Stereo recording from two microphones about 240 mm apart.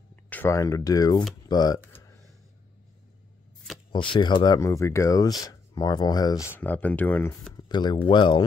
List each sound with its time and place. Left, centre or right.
0.1 s speech: centre
3.9 s speech: centre